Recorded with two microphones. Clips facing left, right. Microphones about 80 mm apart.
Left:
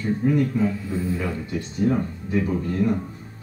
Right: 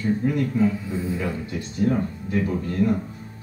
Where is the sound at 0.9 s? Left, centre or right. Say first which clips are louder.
Left 1 dB; centre.